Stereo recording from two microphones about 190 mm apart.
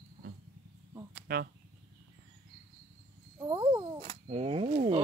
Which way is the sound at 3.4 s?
15° right (ahead or behind).